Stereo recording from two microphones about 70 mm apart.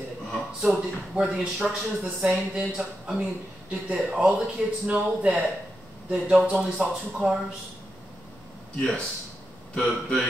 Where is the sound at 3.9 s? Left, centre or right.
Centre.